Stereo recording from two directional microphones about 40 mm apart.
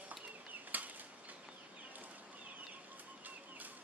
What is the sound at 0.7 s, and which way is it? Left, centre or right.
Bird flight, right.